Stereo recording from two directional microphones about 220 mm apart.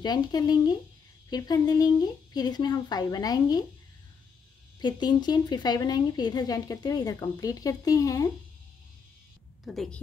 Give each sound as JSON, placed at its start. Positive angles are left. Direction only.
{"t": 0.0, "sound": "speech", "side_deg": 20}
{"t": 4.7, "sound": "speech", "side_deg": 20}
{"t": 9.7, "sound": "a woman's voice", "side_deg": 0}